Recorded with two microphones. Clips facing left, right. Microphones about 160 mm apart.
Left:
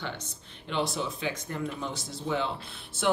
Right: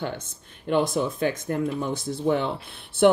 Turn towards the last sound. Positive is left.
turn(degrees=-60)  # may be behind; listen again after turning